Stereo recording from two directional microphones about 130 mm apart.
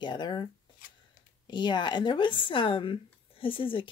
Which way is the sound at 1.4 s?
35° left (ahead or behind).